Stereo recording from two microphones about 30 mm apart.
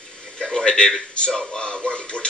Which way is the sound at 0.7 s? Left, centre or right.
Left.